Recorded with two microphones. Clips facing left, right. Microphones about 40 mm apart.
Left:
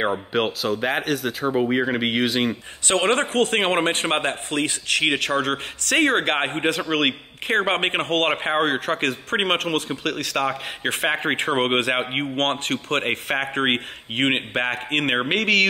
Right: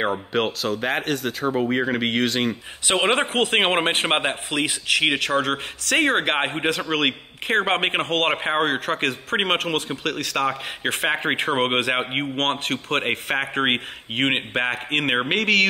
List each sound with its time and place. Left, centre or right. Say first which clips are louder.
0.0 s speech: even; centre
2.9 s speech: even; centre